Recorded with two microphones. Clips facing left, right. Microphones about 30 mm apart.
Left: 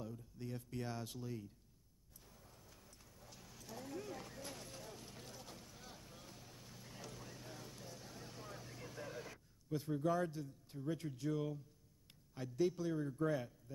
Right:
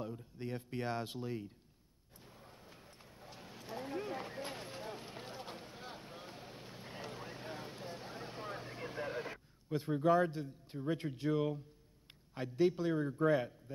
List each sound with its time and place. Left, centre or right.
0.0 s speech: right
2.2 s clip-clop: right
12.4 s speech: right